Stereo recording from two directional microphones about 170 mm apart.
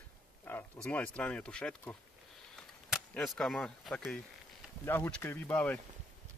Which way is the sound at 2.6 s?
5° left (ahead or behind).